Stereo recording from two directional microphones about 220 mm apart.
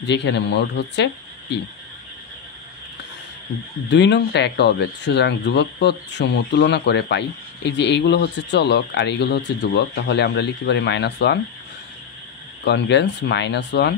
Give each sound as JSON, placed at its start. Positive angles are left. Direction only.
{"t": 0.0, "sound": "speech", "side_deg": 50}
{"t": 3.9, "sound": "speech", "side_deg": 50}
{"t": 12.6, "sound": "speech", "side_deg": 50}